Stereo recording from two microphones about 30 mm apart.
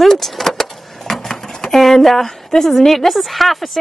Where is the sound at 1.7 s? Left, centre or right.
Centre.